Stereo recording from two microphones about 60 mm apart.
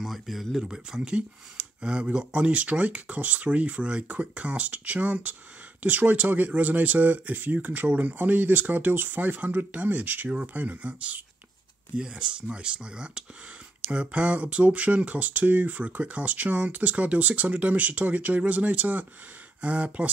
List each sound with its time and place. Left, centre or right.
0.0 s speech: centre; by 20.1 s right